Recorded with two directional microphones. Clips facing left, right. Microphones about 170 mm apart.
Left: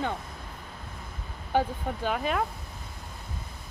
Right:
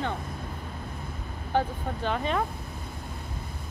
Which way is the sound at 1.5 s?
10° left (ahead or behind).